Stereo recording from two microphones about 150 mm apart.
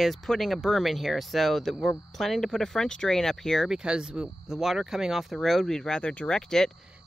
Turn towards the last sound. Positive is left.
turn(degrees=5)  # may be behind; listen again after turning